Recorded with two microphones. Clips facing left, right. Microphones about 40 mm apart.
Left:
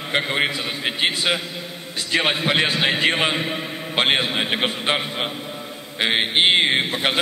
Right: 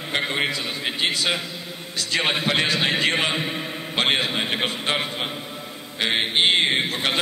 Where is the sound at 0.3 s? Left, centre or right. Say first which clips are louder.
Left 2 dB; centre.